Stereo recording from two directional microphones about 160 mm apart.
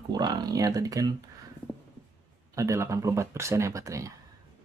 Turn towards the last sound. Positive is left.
turn(degrees=-20)  # may be behind; listen again after turning